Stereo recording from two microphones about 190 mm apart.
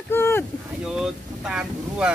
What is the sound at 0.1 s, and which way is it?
Boat, 10° left (ahead or behind).